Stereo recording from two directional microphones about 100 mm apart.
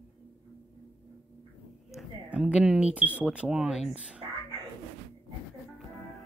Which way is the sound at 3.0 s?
15° right (ahead or behind).